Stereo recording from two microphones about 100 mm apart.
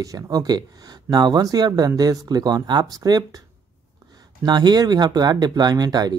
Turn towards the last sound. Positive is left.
turn(degrees=-40)  # may be behind; listen again after turning